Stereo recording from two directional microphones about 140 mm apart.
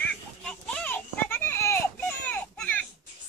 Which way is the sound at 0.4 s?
5° left (ahead or behind).